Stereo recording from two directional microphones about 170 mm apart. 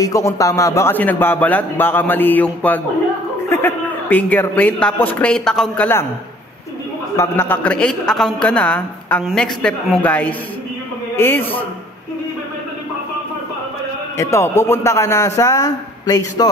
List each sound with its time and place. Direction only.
0.0 s a man's voice: 20° left (ahead or behind)
7.2 s a man's voice: 10° left (ahead or behind)
14.1 s a man's voice: 15° left (ahead or behind)